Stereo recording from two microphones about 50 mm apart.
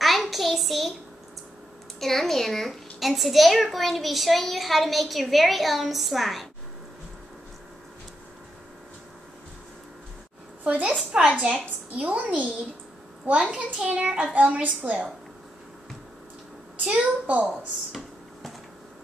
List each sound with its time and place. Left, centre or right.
0.0 s a sound: centre
2.0 s a child's voice: centre
10.6 s a woman's voice: right
16.7 s a child's voice: right